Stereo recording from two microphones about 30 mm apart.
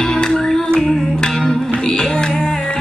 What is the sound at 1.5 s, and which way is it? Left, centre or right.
Music, left.